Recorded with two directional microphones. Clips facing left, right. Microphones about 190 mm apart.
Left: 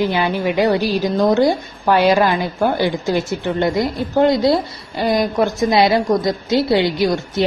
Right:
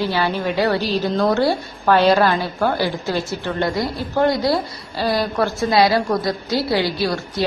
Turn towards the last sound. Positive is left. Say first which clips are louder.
# left 4 dB
turn(degrees=20)  # may be behind; listen again after turning